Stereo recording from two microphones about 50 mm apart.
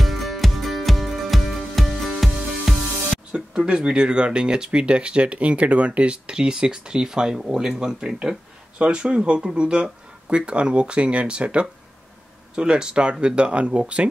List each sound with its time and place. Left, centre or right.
0.0 s music: centre
3.3 s speech: centre
8.7 s speech: right